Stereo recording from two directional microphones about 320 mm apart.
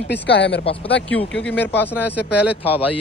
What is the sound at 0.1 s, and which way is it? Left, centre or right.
Speech, left.